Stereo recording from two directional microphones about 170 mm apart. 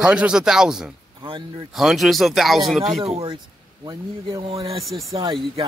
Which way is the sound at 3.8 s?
30° right (ahead or behind).